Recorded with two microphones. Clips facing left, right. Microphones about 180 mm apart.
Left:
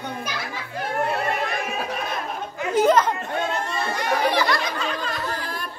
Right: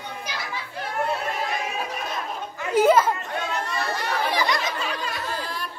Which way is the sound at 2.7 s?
10° right (ahead or behind).